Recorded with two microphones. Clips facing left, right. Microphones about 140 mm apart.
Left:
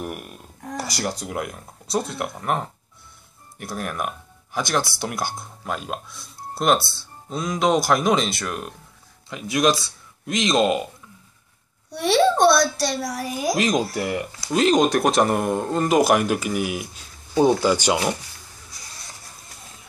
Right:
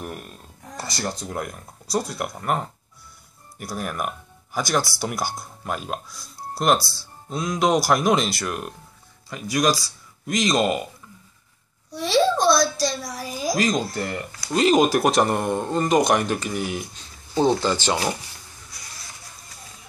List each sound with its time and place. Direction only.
0.0 s a sound: 15° left (ahead or behind)
1.2 s speech: 5° left (ahead or behind)
11.9 s a child's voice: 65° left (ahead or behind)
13.6 s speech: 5° left (ahead or behind)